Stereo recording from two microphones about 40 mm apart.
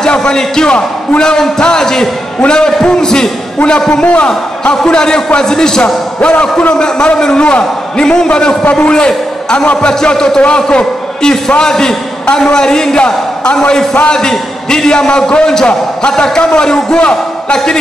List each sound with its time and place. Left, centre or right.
0.0 s a man's voice: centre
3.9 s a man's voice: left